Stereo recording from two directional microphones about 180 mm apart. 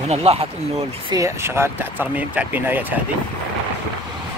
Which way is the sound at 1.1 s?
15° right (ahead or behind).